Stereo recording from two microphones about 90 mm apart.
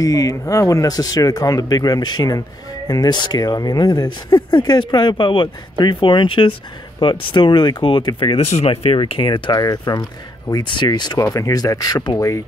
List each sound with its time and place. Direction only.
0.0 s speech: 40° left (ahead or behind); by 9.6 s 65° left (ahead or behind)
9.6 s speech: 45° left (ahead or behind)
10.5 s speech: 60° left (ahead or behind)
11.1 s speech: 40° left (ahead or behind)
12.2 s speech: 35° left (ahead or behind)